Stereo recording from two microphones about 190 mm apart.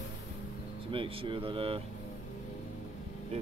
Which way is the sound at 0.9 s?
30° right (ahead or behind).